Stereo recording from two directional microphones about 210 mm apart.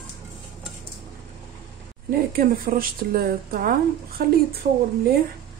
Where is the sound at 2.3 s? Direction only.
45° right (ahead or behind).